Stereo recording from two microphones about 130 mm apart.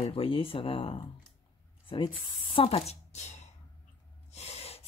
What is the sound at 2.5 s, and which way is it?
Speech, 50° left (ahead or behind).